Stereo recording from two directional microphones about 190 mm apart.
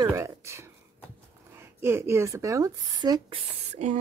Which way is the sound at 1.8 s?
15° right (ahead or behind).